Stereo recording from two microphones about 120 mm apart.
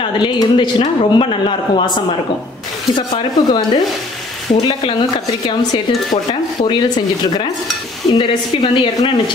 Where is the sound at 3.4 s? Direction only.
35° left (ahead or behind).